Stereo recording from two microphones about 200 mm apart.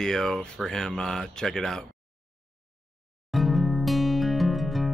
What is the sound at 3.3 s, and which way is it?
Music, centre (ahead or behind).